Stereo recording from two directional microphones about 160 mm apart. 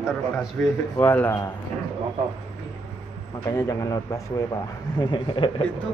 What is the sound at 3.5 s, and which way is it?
A man's voice, 20° left (ahead or behind).